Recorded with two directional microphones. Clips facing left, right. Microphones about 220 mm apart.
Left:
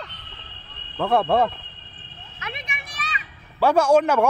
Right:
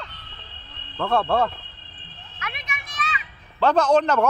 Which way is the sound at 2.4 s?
25° left (ahead or behind).